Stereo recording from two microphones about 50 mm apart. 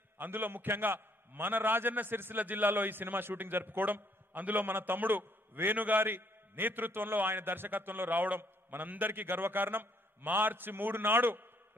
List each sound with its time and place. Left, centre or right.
0.2 s a man's voice: right